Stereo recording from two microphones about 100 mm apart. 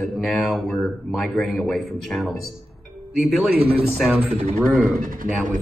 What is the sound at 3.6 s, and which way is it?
Speech, 85° right.